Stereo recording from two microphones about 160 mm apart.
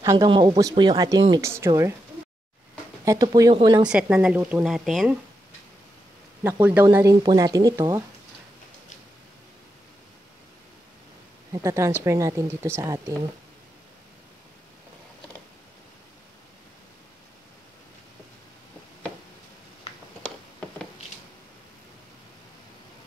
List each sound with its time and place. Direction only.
0.0 s speech: 20° right (ahead or behind)
3.1 s speech: 20° right (ahead or behind)
3.8 s speech: 5° right (ahead or behind)
6.4 s speech: 15° right (ahead or behind)
11.5 s speech: 20° right (ahead or behind)